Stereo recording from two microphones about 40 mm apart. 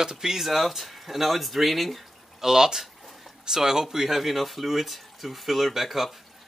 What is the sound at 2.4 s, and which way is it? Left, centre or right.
Speech, centre.